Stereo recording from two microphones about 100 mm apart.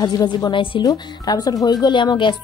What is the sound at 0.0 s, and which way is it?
A woman's voice, 45° left (ahead or behind).